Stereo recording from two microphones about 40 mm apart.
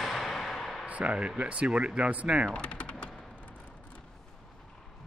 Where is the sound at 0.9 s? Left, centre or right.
Right.